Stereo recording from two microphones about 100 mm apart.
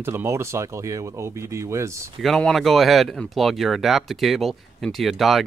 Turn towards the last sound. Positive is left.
turn(degrees=0)  # may be behind; listen again after turning